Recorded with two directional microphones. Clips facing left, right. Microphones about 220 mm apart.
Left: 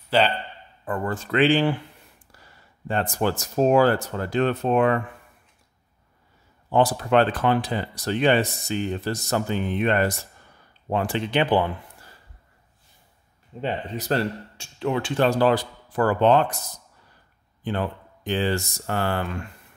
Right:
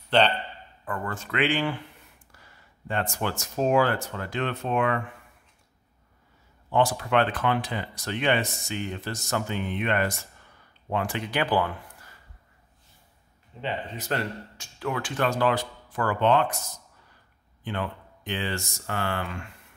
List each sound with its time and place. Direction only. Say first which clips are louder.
0.1 s speech: left 1 dB; 5° left (ahead or behind)
0.8 s speech: left 5 dB; 30° left (ahead or behind)
2.9 s speech: left 5 dB; 35° left (ahead or behind)
6.7 s speech: left 4 dB; 35° left (ahead or behind)
13.6 s speech: left 4 dB; 35° left (ahead or behind)
17.6 s speech: left 5 dB; 35° left (ahead or behind)